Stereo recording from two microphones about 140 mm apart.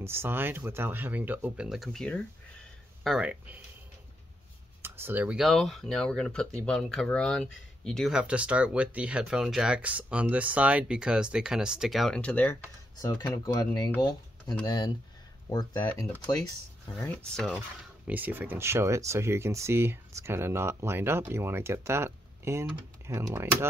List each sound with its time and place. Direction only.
0.0 s speech: 15° right (ahead or behind); by 2.2 s 5° left (ahead or behind)
3.0 s speech: 5° right (ahead or behind)
4.8 s speech: 15° right (ahead or behind); by 12.5 s 10° left (ahead or behind)
13.0 s speech: 25° left (ahead or behind)
15.5 s speech: 30° left (ahead or behind)
17.0 s speech: 10° left (ahead or behind)
17.5 s speech: 10° right (ahead or behind)